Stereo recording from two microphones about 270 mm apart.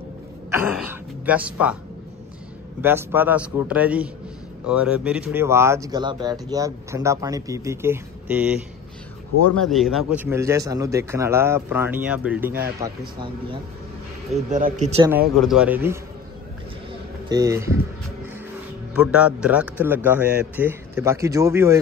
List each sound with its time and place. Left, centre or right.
0.5 s speech: centre
2.8 s a man's voice: centre
9.6 s a man's voice: centre
14.5 s speech: right
15.0 s a man's voice: centre
17.3 s a man's voice: centre
18.9 s a man's voice: centre